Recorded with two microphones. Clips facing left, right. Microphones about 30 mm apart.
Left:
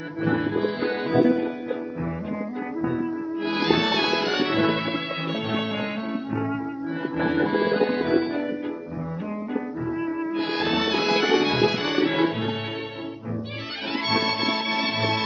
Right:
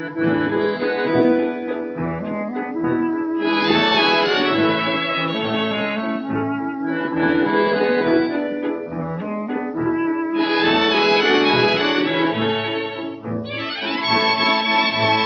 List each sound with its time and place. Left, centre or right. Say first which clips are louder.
0.2 s accordion: right 5 dB; right
1.1 s music: right 3 dB; centre
2.9 s music: right 7 dB; right
7.2 s accordion: right 5 dB; centre
10.0 s music: right 7 dB; right
14.0 s music: right 6 dB; right